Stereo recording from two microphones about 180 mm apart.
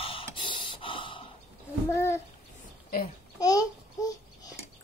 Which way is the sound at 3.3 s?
20° left (ahead or behind).